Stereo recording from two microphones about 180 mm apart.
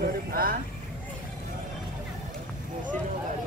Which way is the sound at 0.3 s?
55° right (ahead or behind).